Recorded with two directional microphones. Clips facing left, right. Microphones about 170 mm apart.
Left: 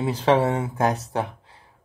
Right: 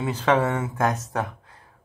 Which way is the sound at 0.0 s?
30° left (ahead or behind).